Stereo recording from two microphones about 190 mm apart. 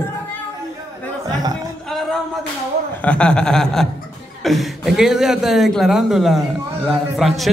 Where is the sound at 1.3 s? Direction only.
20° right (ahead or behind).